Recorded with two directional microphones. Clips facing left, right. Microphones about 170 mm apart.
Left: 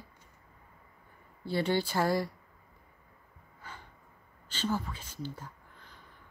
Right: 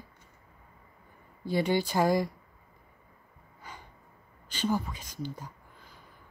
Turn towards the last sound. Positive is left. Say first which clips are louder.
# right 1 dB
turn(degrees=-10)  # may be behind; listen again after turning